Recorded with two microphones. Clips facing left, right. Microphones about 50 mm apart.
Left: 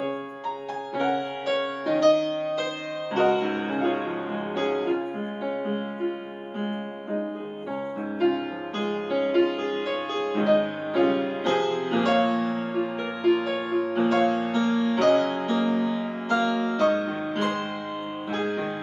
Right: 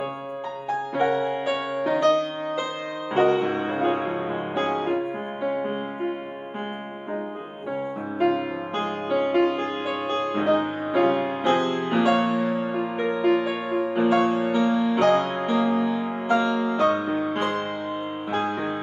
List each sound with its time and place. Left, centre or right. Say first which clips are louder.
0.9 s music: right 3 dB; centre
8.2 s music: right 2 dB; centre